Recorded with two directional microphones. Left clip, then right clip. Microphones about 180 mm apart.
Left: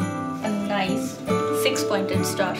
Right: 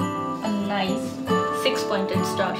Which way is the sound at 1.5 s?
Centre (ahead or behind).